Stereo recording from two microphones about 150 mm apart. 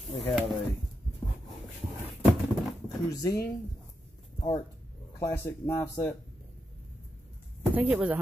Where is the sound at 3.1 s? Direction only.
25° left (ahead or behind).